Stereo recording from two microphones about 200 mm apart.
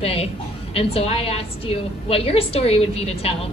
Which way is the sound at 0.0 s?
30° left (ahead or behind).